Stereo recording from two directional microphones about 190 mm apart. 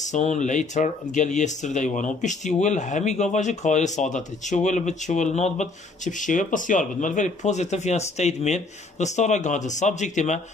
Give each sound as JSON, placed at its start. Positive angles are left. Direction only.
{"t": 0.0, "sound": "speech", "side_deg": 40}